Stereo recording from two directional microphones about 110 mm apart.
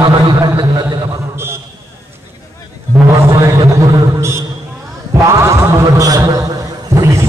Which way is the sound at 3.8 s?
25° right (ahead or behind).